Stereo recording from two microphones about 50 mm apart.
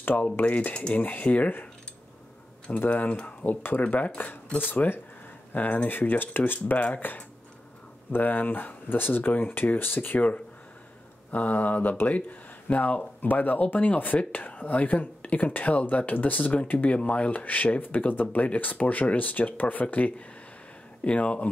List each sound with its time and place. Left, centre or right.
0.4 s speech: left
2.9 s speech: left
11.3 s speech: left